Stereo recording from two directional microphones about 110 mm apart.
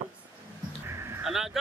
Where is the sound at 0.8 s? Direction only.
25° right (ahead or behind).